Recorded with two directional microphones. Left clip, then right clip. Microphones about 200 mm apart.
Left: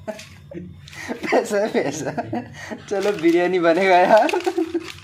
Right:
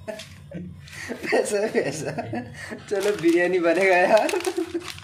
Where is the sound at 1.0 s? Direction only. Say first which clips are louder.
Left 3 dB; 25° left (ahead or behind).